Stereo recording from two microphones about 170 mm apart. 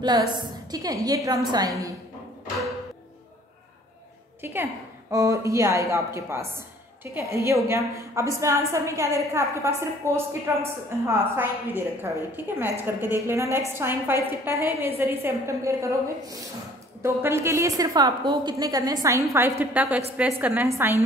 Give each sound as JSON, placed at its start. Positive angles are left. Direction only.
{"t": 0.0, "sound": "a woman's voice", "side_deg": -25}
{"t": 4.4, "sound": "a woman's voice", "side_deg": -15}